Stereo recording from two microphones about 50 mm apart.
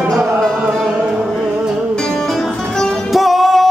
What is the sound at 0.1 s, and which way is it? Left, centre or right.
Music, centre.